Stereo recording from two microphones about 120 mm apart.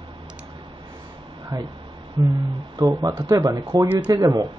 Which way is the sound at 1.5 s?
35° right (ahead or behind).